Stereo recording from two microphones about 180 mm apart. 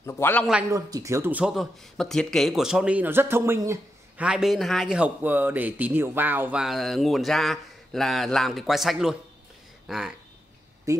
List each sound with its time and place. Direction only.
0.0 s a man's voice: 15° left (ahead or behind)
0.7 s speech: 20° right (ahead or behind)
4.3 s speech: centre (ahead or behind)
10.9 s speech: 15° right (ahead or behind)